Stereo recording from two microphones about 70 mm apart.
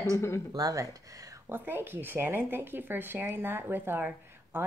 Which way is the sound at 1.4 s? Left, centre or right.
Right.